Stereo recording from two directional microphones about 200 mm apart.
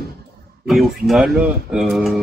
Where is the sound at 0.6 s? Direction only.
Centre (ahead or behind).